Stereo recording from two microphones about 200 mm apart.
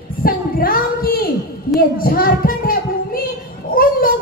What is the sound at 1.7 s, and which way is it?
A child's voice, 45° left (ahead or behind).